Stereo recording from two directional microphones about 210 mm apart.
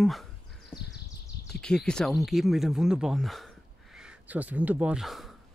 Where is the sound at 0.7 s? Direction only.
20° left (ahead or behind).